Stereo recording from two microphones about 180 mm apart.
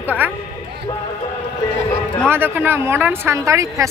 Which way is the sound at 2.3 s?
10° right (ahead or behind).